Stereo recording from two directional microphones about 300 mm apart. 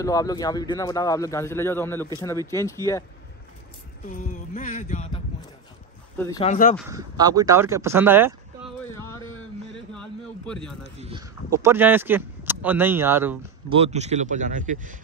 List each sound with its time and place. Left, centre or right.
0.0 s a man's voice: centre
4.0 s speech: left
6.1 s a man's voice: centre
6.5 s speech: left
6.9 s speech: centre
8.9 s a sound: centre
11.0 s speech: centre
13.7 s speech: centre